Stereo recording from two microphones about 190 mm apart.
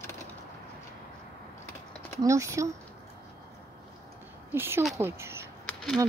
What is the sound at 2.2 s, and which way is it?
Speech, 15° right (ahead or behind).